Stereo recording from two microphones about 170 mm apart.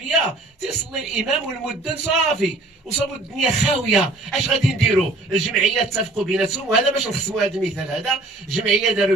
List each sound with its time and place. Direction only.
0.9 s speech: 5° right (ahead or behind)